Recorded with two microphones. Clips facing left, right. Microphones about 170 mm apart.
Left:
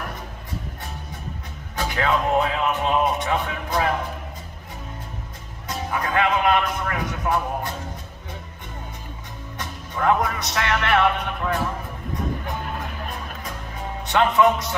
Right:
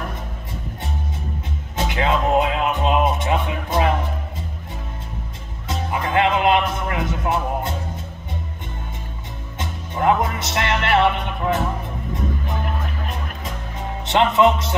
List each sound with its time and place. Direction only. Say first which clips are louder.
1.8 s speech: right 2 dB; 20° right (ahead or behind)
5.7 s speech: right 2 dB; 25° right (ahead or behind)
9.6 s music: right 3 dB; 20° right (ahead or behind)
14.0 s speech: right 2 dB; 25° right (ahead or behind)